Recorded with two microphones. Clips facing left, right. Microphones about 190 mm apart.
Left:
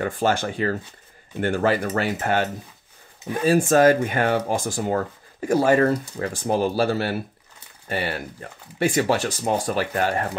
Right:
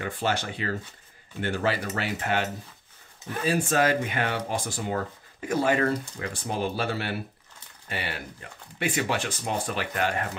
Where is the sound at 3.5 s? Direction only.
45° left (ahead or behind).